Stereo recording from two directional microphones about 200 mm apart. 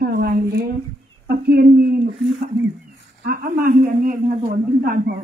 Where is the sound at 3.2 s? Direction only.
45° right (ahead or behind).